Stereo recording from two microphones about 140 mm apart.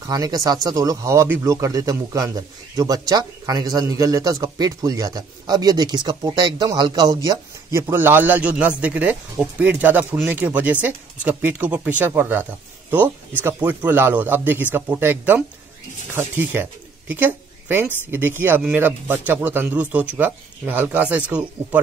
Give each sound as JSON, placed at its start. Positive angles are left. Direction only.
{"t": 0.0, "sound": "speech", "side_deg": -25}